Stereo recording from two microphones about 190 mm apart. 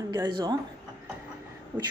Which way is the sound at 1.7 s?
10° right (ahead or behind).